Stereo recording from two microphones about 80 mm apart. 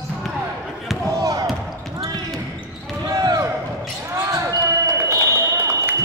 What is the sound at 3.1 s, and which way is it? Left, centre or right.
Basketball bounce, right.